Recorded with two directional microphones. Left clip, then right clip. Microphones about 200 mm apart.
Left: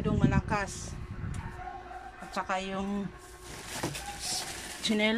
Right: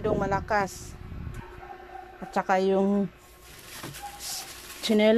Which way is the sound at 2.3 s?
40° right (ahead or behind).